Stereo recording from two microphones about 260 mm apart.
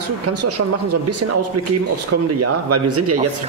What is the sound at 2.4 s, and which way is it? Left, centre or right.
Speech, right.